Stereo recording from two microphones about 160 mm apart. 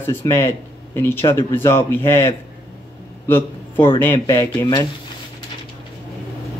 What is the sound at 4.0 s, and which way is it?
Speech, 15° left (ahead or behind).